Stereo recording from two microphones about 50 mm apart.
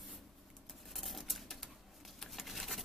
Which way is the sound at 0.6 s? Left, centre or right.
Centre.